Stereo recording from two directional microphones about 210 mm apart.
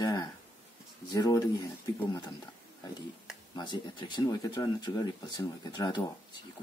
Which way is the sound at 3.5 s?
20° left (ahead or behind).